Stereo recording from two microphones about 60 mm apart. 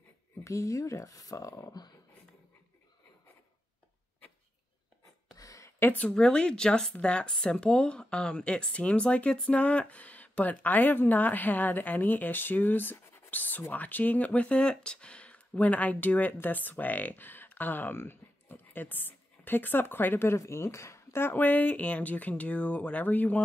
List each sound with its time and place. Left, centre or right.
0.4 s speech: left
1.6 s speech: left
5.3 s a sound: left
5.8 s speech: left
6.0 s speech: centre; by 20.3 s left
20.3 s speech: left